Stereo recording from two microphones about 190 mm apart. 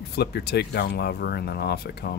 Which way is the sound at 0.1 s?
60° left (ahead or behind).